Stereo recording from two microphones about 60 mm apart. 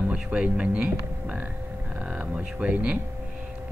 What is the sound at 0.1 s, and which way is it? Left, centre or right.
Speech, centre.